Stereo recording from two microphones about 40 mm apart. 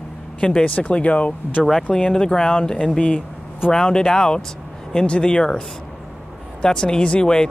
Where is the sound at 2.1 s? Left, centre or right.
Centre.